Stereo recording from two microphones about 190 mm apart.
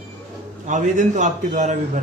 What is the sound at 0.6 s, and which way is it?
A man's voice, 40° right (ahead or behind).